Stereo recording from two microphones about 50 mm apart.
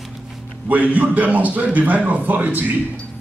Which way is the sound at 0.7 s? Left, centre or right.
Right.